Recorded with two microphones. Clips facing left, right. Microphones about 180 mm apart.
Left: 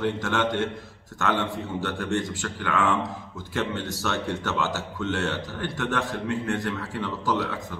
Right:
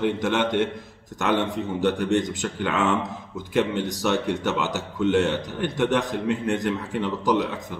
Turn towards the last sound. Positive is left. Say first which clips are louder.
# right 4 dB
turn(degrees=-15)  # may be behind; listen again after turning